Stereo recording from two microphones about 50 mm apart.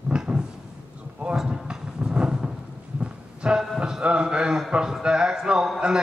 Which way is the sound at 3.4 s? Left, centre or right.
Centre.